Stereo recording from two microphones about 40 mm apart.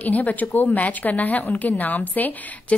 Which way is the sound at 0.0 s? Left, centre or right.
Left.